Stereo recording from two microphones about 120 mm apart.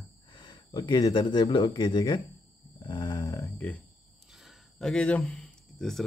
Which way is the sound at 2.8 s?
40° left (ahead or behind).